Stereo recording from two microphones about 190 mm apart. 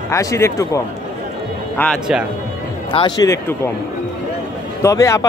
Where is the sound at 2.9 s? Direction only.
20° left (ahead or behind).